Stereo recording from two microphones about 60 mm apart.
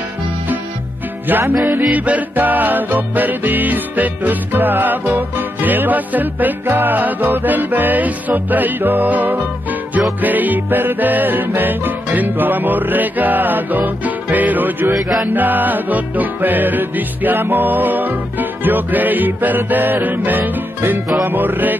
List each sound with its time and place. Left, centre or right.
1.3 s music: right